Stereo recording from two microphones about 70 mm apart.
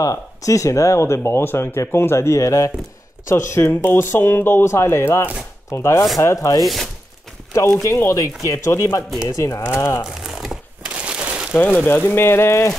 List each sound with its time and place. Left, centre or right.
0.0 s speech: left
3.3 s speech: left
6.6 s speech: centre
7.5 s speech: left
10.2 s a sound: centre
11.1 s crumpling: centre
11.8 s speech: left